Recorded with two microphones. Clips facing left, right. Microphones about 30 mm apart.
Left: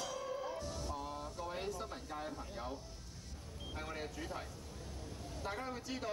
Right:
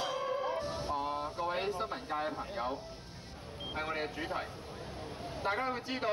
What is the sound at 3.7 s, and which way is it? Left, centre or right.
Speech, right.